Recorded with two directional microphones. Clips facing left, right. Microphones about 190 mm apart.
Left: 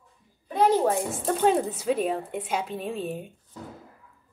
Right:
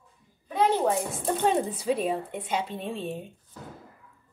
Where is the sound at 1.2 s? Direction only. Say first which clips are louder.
Left 2 dB; centre (ahead or behind).